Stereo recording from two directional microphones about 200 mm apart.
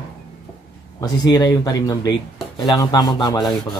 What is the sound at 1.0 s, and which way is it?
Speech, 20° left (ahead or behind).